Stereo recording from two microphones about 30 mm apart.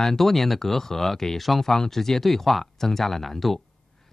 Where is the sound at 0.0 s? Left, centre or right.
Centre.